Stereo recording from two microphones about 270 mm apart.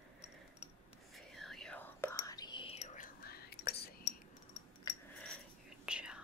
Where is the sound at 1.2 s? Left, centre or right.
Centre; by 4.0 s left.